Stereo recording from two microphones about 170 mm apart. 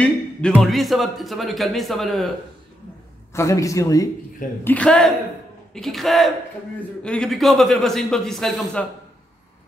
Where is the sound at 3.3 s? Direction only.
20° left (ahead or behind).